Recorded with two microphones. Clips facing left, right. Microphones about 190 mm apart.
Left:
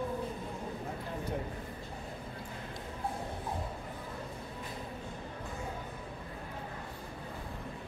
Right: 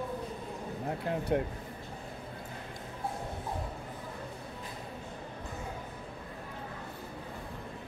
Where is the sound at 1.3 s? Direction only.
70° right (ahead or behind).